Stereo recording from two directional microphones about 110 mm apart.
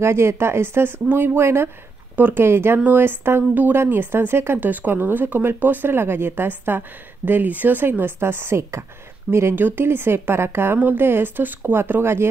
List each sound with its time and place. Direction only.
0.0 s speech: 25° right (ahead or behind)